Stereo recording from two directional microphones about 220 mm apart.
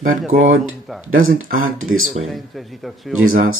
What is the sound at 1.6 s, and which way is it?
Speech, 65° right (ahead or behind).